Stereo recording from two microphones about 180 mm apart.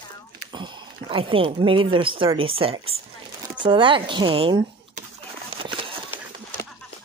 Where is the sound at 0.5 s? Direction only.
25° right (ahead or behind).